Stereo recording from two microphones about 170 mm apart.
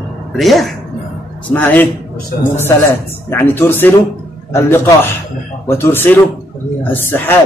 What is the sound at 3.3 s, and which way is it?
A man's voice, 15° left (ahead or behind).